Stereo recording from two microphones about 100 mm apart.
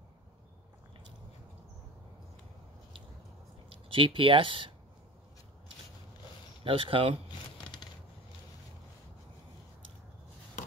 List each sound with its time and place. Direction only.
3.9 s speech: 60° right (ahead or behind)
6.6 s speech: 60° right (ahead or behind)